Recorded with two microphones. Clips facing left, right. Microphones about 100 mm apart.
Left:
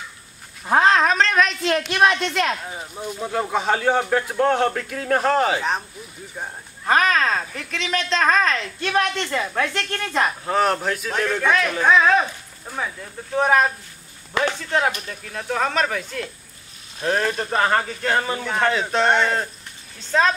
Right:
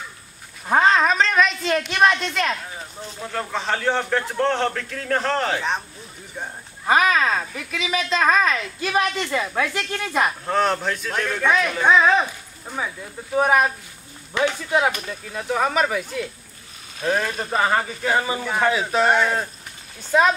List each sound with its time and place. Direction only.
0.7 s a woman's voice: centre (ahead or behind)
2.7 s speech: 15° left (ahead or behind)
6.9 s a woman's voice: 10° right (ahead or behind)
14.7 s a woman's voice: 10° right (ahead or behind)